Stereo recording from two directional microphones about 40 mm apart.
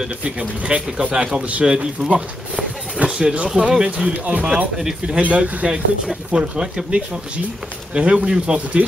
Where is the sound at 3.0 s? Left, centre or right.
Centre.